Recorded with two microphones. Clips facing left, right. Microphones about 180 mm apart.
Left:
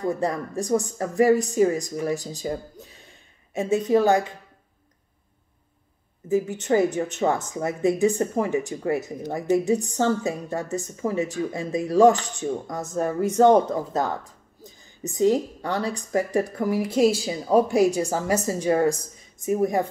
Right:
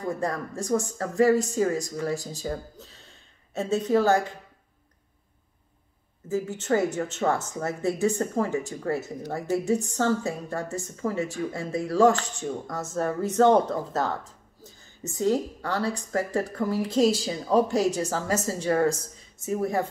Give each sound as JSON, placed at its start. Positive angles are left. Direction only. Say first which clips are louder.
{"t": 0.0, "sound": "speech", "louder": "left 4 dB", "side_deg": 20}
{"t": 6.2, "sound": "speech", "louder": "left 5 dB", "side_deg": 15}